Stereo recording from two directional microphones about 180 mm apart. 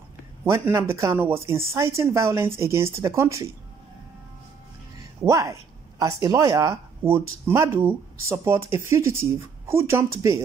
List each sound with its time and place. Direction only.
0.5 s speech: 15° right (ahead or behind)
5.2 s speech: 15° right (ahead or behind)